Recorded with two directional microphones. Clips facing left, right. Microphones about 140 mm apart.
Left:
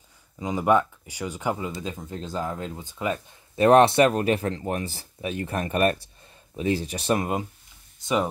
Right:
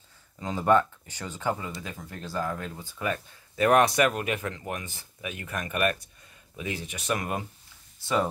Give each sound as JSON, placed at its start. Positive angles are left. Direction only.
{"t": 0.4, "sound": "speech", "side_deg": 15}